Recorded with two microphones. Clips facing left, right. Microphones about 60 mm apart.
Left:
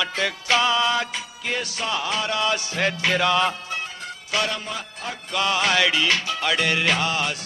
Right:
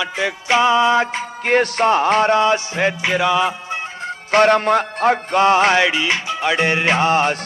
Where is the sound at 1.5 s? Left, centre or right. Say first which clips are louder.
Right 12 dB; right; by 3.5 s centre.